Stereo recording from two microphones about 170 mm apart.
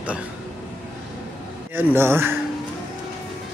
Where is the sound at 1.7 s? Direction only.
15° right (ahead or behind).